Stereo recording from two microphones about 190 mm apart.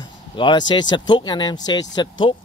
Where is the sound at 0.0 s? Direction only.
25° left (ahead or behind).